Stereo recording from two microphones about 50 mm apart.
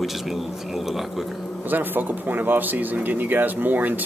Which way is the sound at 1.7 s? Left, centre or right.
Right.